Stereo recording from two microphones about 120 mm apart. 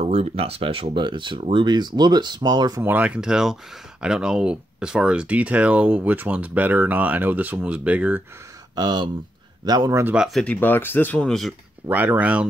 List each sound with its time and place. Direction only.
0.0 s speech: 60° right (ahead or behind); by 2.8 s 35° right (ahead or behind)
2.8 s speech: 15° right (ahead or behind)
8.7 s speech: 35° right (ahead or behind)
10.0 s speech: 5° right (ahead or behind)
10.4 s speech: 15° left (ahead or behind)
11.9 s speech: 15° right (ahead or behind)